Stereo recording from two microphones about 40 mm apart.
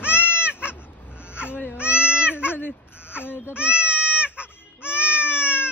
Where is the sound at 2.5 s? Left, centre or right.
Left.